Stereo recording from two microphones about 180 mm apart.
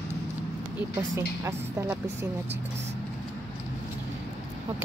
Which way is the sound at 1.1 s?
15° right (ahead or behind).